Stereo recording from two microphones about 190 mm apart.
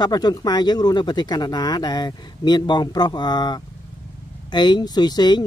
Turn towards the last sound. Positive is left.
turn(degrees=20)  # may be behind; listen again after turning